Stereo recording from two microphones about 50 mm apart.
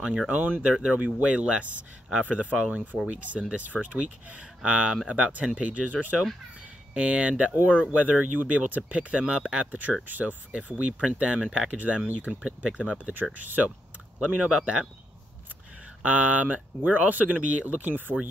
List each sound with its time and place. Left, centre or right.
0.3 s speech: right
9.2 s speech: centre
9.7 s speech: right; by 11.7 s centre
11.7 s speech: right
12.4 s speech: centre
13.1 s speech: right
16.0 s speech: right